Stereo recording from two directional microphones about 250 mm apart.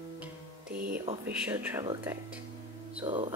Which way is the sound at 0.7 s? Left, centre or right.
Right.